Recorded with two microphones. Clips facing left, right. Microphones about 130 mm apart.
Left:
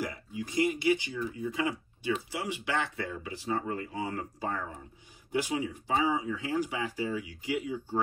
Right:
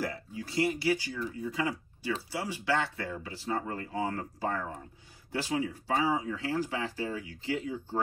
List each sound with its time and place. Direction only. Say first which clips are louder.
0.0 s speech: even; 15° left (ahead or behind)